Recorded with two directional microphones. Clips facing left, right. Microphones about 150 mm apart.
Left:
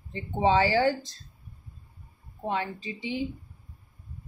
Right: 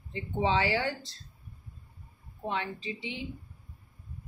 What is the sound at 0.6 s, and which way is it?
Speech, 40° left (ahead or behind).